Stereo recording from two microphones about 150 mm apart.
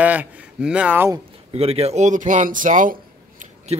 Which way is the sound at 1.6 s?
40° right (ahead or behind).